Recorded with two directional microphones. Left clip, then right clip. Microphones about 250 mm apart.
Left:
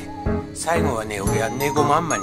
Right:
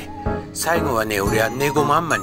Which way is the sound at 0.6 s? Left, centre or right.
Centre.